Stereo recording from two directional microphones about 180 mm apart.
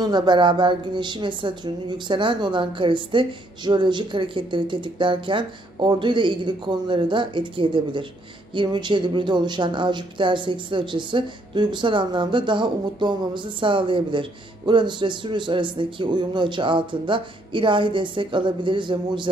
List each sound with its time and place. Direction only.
0.0 s a woman's voice: 25° right (ahead or behind)